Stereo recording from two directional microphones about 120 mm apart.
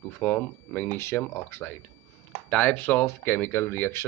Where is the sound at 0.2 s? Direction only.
15° left (ahead or behind).